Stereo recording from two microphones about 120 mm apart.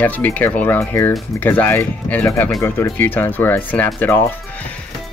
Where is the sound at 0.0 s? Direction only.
15° left (ahead or behind).